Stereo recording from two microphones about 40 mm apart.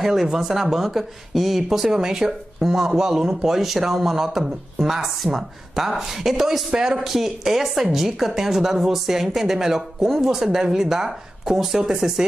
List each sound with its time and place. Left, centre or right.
0.0 s speech: centre
7.0 s speech: centre